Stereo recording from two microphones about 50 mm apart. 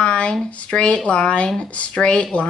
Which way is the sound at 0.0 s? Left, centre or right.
Left.